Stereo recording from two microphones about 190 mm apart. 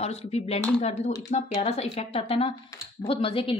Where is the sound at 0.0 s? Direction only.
35° left (ahead or behind).